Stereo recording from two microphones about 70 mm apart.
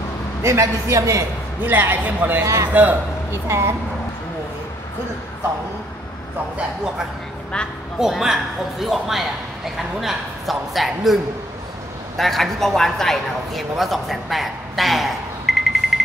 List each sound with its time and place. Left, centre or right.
0.4 s a man's voice: right
1.6 s a man's voice: right
2.4 s a man's voice: right
2.7 s a man's voice: right
3.3 s a woman's voice: right
7.5 s a woman's voice: centre
8.0 s speech: centre
12.2 s a man's voice: centre